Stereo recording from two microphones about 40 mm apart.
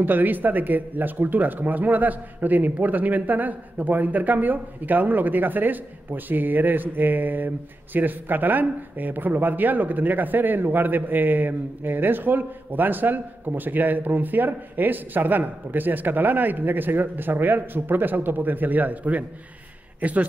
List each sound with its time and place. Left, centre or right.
0.0 s speech: right